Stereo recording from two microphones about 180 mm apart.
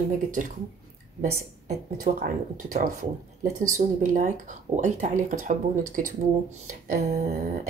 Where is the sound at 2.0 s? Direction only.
45° right (ahead or behind).